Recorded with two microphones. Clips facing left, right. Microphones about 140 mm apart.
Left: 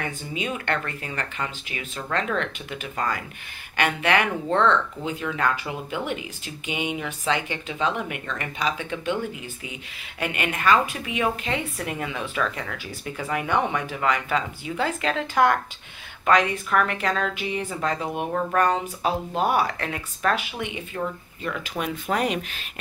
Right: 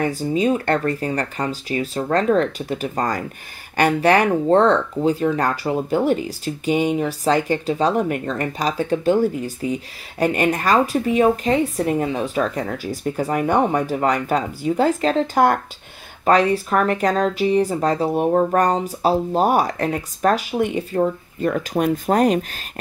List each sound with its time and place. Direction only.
0.0 s speech: 35° right (ahead or behind)